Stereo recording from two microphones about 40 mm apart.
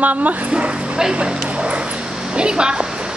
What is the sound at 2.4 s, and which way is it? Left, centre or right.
Speech, right.